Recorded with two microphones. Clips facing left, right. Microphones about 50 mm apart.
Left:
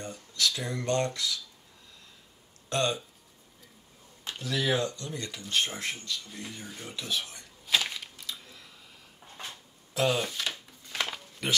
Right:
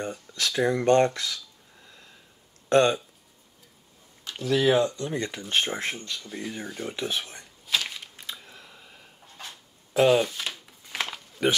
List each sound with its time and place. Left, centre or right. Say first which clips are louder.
0.0 s speech: right 1 dB; right
2.7 s speech: right 9 dB; right
4.4 s speech: right 7 dB; right
7.6 s a sound: even; centre
8.2 s camera: right 2 dB; right
9.9 s speech: right 8 dB; right